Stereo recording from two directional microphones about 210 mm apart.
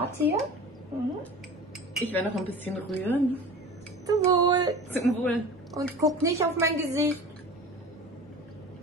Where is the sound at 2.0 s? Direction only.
10° left (ahead or behind).